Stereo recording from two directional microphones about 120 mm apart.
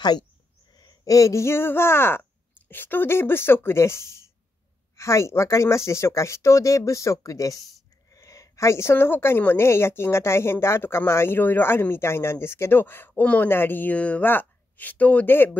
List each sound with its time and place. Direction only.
0.7 s a woman's voice: 30° left (ahead or behind)